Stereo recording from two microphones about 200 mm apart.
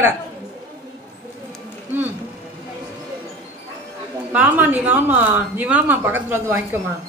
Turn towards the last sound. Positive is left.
turn(degrees=-10)  # may be behind; listen again after turning